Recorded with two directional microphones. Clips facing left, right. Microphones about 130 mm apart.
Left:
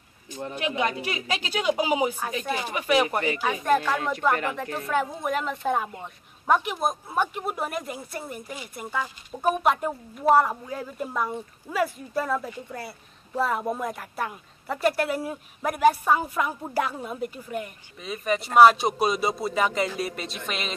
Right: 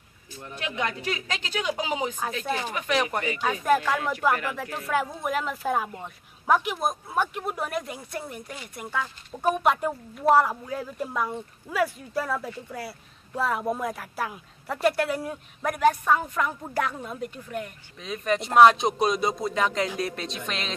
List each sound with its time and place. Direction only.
0.6 s a woman's voice: 15° left (ahead or behind)